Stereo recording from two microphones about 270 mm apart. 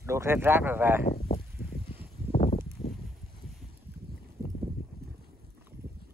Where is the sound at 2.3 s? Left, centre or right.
Left.